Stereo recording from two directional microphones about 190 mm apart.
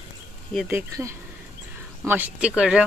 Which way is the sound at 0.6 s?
15° right (ahead or behind).